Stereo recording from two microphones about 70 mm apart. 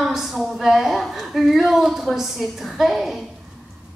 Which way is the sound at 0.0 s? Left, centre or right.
Centre.